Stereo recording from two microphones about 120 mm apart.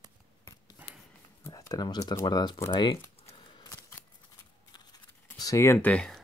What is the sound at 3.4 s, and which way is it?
Scissors, 40° left (ahead or behind).